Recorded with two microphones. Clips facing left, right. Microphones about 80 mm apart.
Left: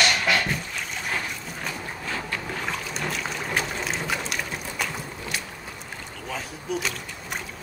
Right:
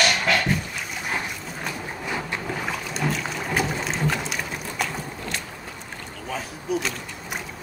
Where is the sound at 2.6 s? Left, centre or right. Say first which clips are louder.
Right 4 dB; centre.